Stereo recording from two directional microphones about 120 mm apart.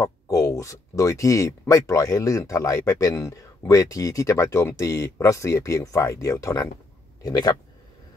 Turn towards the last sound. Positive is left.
turn(degrees=30)  # may be behind; listen again after turning